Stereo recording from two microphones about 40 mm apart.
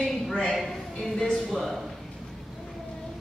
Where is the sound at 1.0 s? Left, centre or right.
Centre.